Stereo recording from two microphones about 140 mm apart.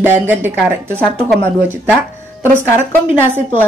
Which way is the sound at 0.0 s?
15° right (ahead or behind).